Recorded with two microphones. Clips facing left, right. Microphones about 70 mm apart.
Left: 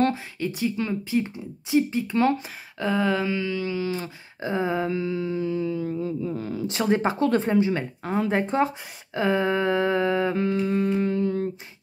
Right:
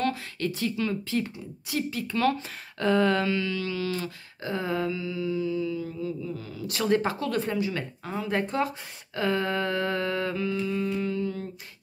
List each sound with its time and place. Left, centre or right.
0.4 s speech: centre
2.8 s a sound: centre
3.3 s speech: centre
4.9 s speech: left
6.7 s speech: left
10.3 s speech: left